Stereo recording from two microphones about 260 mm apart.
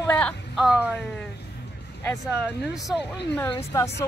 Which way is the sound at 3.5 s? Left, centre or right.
Centre.